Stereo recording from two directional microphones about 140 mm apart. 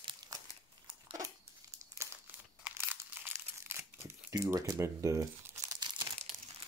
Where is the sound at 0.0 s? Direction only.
30° right (ahead or behind).